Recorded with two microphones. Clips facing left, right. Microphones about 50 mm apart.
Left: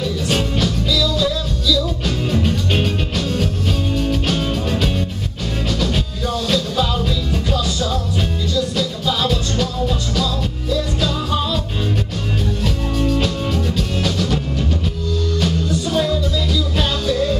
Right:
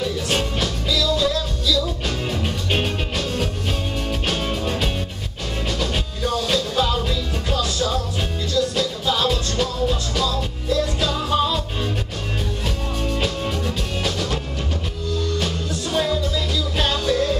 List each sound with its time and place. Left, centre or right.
0.0 s music: centre
12.6 s music: centre